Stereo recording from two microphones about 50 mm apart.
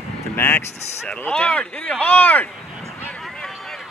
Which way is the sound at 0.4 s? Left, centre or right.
Left.